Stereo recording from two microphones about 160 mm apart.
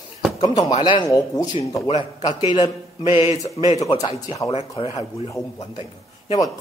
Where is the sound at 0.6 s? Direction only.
30° left (ahead or behind).